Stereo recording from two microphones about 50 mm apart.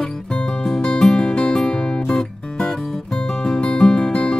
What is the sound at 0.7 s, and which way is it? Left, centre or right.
Music, centre.